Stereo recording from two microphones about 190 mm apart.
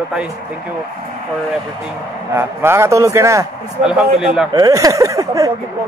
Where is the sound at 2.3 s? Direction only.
15° right (ahead or behind).